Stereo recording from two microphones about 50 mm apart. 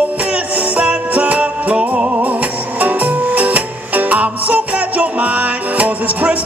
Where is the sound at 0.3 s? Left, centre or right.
Right.